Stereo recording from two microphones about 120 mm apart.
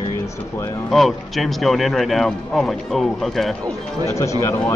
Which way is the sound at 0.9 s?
Centre (ahead or behind).